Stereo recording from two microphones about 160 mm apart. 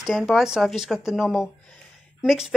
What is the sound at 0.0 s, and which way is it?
Speech, centre (ahead or behind).